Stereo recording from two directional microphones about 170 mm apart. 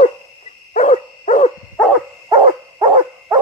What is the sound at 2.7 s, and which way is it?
Dog, 20° right (ahead or behind).